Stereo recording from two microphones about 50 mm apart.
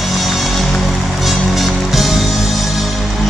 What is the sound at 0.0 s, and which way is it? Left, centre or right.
Music, centre.